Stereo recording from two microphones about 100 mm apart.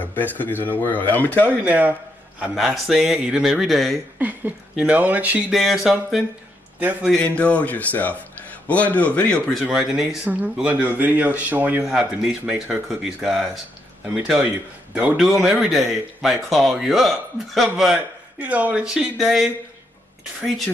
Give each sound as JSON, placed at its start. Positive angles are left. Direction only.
{"t": 0.0, "sound": "speech", "side_deg": 20}
{"t": 1.6, "sound": "speech", "side_deg": -15}
{"t": 2.4, "sound": "speech", "side_deg": 0}
{"t": 4.2, "sound": "speech", "side_deg": -15}
{"t": 5.5, "sound": "speech", "side_deg": -5}
{"t": 6.8, "sound": "a man's voice", "side_deg": -15}
{"t": 7.1, "sound": "speech", "side_deg": 10}
{"t": 9.5, "sound": "speech", "side_deg": 0}
{"t": 10.3, "sound": "speech", "side_deg": -15}
{"t": 11.8, "sound": "speech", "side_deg": -5}
{"t": 18.4, "sound": "speech", "side_deg": -15}